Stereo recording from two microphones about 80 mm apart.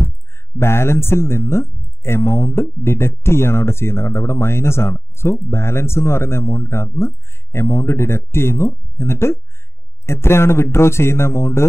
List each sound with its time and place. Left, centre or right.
0.6 s speech: left